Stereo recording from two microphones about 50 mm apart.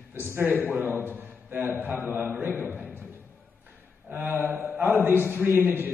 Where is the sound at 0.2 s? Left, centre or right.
Right.